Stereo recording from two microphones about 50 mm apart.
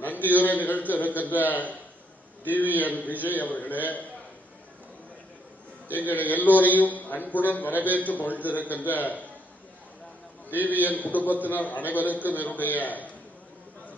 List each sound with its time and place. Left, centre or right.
0.2 s a man's voice: left
6.0 s a man's voice: left
10.5 s a man's voice: left